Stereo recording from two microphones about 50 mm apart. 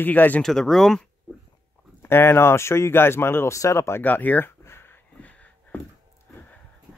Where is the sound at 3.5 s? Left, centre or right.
Left.